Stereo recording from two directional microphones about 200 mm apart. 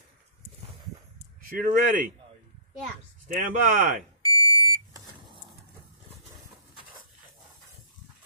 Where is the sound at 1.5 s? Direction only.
45° right (ahead or behind).